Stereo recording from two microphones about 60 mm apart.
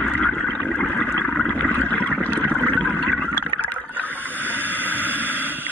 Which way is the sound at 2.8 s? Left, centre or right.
Centre.